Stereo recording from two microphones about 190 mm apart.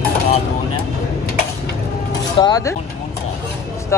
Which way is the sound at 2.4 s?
20° left (ahead or behind).